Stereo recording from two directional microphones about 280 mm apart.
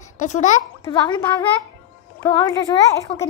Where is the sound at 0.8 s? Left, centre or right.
Centre.